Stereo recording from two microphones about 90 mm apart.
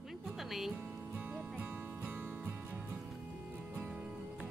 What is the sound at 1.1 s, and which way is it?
Music, 15° right (ahead or behind).